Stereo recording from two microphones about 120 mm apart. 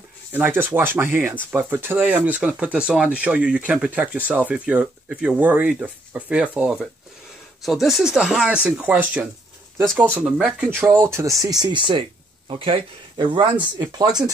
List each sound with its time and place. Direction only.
0.3 s speech: 15° right (ahead or behind)
11.4 s speech: 35° right (ahead or behind)